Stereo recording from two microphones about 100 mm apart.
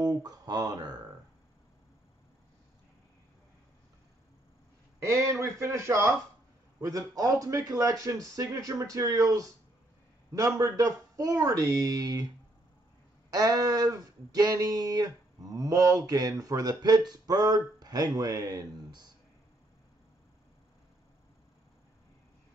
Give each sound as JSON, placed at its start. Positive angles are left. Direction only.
{"t": 0.0, "sound": "speech", "side_deg": -40}
{"t": 5.0, "sound": "a man's voice", "side_deg": -30}
{"t": 13.3, "sound": "speech", "side_deg": -40}